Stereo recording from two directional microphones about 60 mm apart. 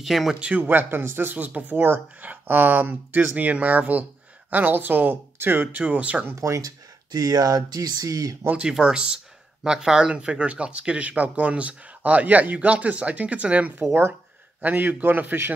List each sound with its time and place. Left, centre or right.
0.0 s speech: centre
0.4 s speech: right
6.4 s speech: right
7.2 s speech: right
8.5 s speech: centre; by 15.5 s right